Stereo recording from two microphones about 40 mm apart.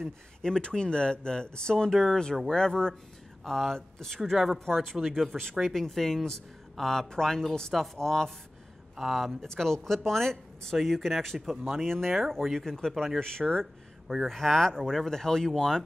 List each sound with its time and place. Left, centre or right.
0.4 s speech: left
5.0 s speech: centre
7.7 s speech: centre
8.9 s speech: centre
9.4 s speech: centre